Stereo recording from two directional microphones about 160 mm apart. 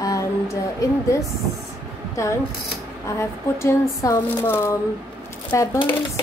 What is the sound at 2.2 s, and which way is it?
Speech, 20° left (ahead or behind).